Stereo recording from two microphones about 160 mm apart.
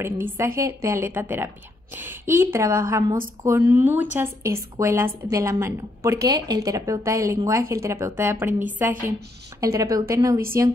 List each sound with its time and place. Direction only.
0.0 s a woman's voice: 15° right (ahead or behind)